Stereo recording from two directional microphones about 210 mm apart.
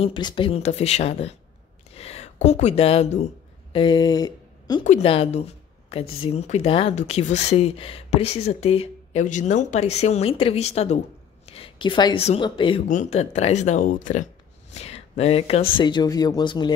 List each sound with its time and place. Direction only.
0.0 s speech: 25° left (ahead or behind)
4.8 s a woman's voice: 30° left (ahead or behind)
12.8 s speech: 35° left (ahead or behind); by 16.7 s 20° left (ahead or behind)